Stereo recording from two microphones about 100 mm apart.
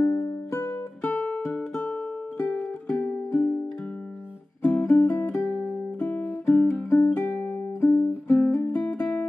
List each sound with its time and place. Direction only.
0.0 s music: 25° left (ahead or behind)
3.1 s music: 25° left (ahead or behind)
4.8 s music: 25° left (ahead or behind)
5.4 s music: centre (ahead or behind)
5.9 s music: 15° left (ahead or behind)
8.3 s music: 10° left (ahead or behind)